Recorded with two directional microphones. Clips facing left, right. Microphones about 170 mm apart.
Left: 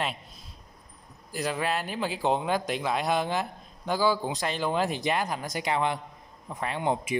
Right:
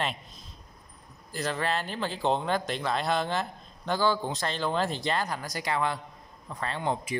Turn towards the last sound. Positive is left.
turn(degrees=15)  # may be behind; listen again after turning